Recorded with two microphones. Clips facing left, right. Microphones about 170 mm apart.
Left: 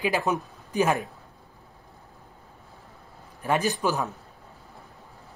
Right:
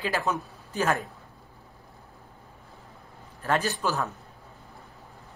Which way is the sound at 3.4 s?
15° left (ahead or behind).